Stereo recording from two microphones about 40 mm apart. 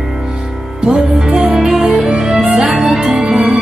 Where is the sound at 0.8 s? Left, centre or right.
Centre.